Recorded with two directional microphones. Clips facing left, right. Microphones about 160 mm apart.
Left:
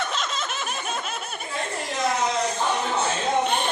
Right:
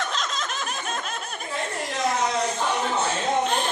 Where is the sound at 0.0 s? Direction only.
5° left (ahead or behind).